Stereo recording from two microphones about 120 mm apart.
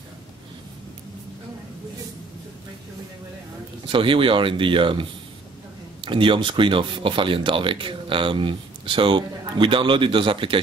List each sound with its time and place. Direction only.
3.8 s speech: 45° right (ahead or behind)